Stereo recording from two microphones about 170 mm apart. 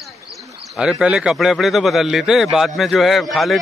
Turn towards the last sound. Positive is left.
turn(degrees=0)  # may be behind; listen again after turning